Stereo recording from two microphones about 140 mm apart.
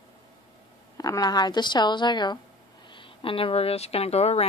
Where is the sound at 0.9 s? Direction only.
25° left (ahead or behind).